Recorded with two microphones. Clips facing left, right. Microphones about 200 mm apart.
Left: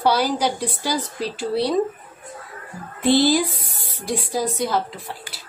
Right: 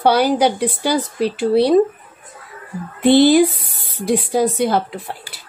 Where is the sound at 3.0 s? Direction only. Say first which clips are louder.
Right 6 dB; 60° right (ahead or behind).